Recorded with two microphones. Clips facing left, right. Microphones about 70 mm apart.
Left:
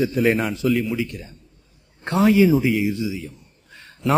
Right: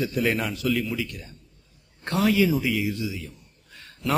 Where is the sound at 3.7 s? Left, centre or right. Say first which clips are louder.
Left 5 dB; left.